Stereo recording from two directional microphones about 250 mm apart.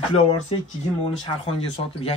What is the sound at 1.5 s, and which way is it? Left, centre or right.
Speech, left.